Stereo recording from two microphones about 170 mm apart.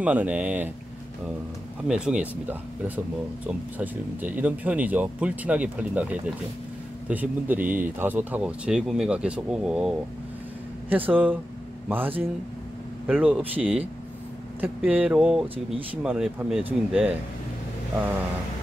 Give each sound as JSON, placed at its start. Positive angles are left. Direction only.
{"t": 0.0, "sound": "speech", "side_deg": -10}
{"t": 1.9, "sound": "speech", "side_deg": -5}
{"t": 3.7, "sound": "speech", "side_deg": -10}
{"t": 11.1, "sound": "speech", "side_deg": -10}
{"t": 15.5, "sound": "speech", "side_deg": -35}
{"t": 16.0, "sound": "speech", "side_deg": -5}